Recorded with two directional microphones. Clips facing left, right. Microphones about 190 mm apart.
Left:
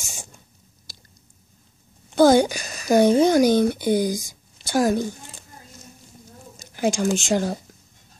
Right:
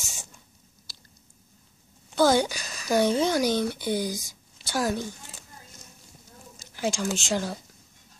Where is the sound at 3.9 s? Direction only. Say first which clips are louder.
Left 7 dB; 15° left (ahead or behind).